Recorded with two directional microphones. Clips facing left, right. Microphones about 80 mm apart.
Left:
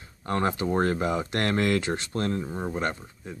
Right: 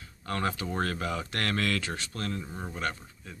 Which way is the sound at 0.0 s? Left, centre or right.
Left.